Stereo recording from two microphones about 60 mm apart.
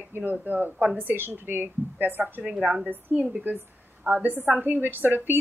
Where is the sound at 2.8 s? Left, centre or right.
Right.